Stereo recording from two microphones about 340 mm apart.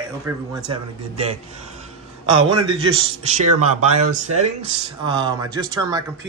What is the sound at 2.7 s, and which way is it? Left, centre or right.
A man's voice, centre.